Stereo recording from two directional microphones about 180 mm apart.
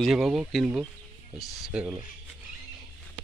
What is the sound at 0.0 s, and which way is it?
Speech, centre (ahead or behind).